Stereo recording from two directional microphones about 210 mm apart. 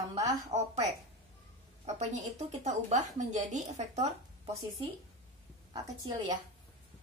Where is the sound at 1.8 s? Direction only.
35° right (ahead or behind).